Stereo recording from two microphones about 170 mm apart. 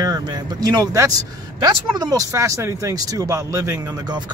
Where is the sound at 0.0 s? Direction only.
20° right (ahead or behind).